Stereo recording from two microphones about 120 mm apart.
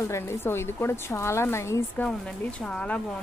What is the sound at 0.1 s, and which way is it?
A woman's voice, 20° left (ahead or behind).